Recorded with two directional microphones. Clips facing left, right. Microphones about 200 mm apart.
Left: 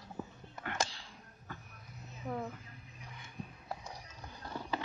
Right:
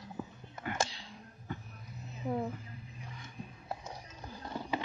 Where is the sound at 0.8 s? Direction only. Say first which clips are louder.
Right 2 dB; 15° right (ahead or behind).